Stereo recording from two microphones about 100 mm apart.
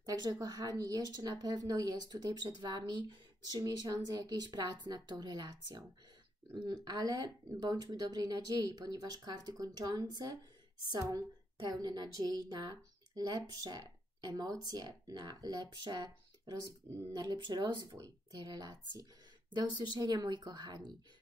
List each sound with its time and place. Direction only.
0.0 s a woman's voice: 40° right (ahead or behind)